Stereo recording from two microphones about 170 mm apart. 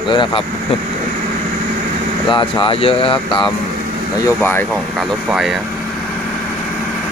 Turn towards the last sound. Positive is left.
turn(degrees=-5)  # may be behind; listen again after turning